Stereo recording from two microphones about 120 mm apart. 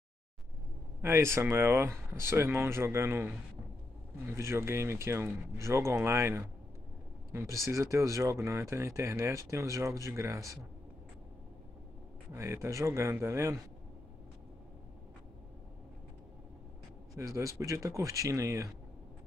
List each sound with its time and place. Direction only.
1.0 s speech: 20° right (ahead or behind)
4.3 s speech: 20° right (ahead or behind)
12.3 s speech: 20° right (ahead or behind)
17.2 s speech: 30° right (ahead or behind)